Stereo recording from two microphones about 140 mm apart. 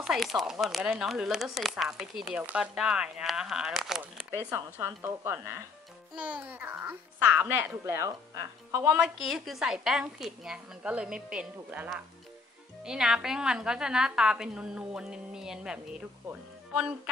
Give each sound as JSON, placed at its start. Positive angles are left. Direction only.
{"t": 0.0, "sound": "a woman's voice", "side_deg": -5}
{"t": 4.6, "sound": "a child's voice", "side_deg": -15}
{"t": 9.0, "sound": "a woman's voice", "side_deg": 0}